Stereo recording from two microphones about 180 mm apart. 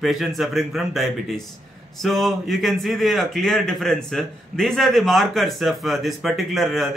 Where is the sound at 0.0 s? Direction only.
Centre (ahead or behind).